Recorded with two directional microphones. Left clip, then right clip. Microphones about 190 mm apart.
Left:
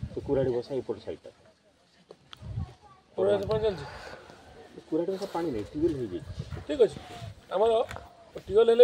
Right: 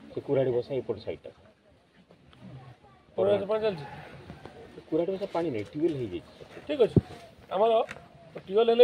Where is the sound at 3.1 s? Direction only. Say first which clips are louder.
Right 1 dB; centre (ahead or behind).